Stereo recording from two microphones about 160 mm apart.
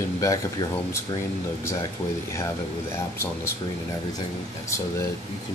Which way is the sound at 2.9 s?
15° left (ahead or behind).